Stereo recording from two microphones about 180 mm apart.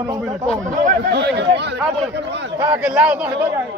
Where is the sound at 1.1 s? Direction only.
70° right (ahead or behind).